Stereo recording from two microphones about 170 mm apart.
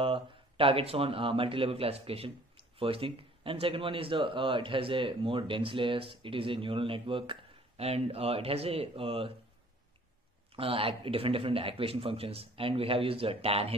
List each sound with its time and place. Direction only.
0.0 s speech: 30° right (ahead or behind)
10.5 s speech: 35° right (ahead or behind)